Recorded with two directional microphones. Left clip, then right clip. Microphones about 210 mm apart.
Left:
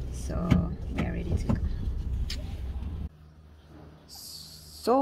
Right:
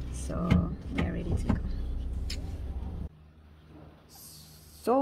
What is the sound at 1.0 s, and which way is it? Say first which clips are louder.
Speech: even; 10° right (ahead or behind).